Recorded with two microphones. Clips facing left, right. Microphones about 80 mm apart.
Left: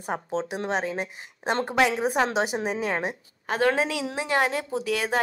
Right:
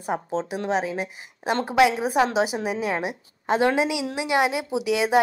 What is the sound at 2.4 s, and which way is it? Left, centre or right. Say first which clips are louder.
Speech: right 2 dB; left.